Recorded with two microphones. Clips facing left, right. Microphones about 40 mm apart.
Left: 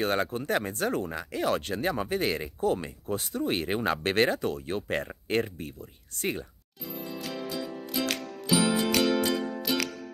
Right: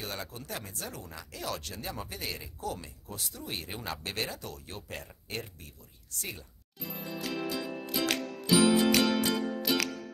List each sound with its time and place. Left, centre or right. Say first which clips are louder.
0.0 s speech: left 12 dB; left
6.8 s music: left 1 dB; centre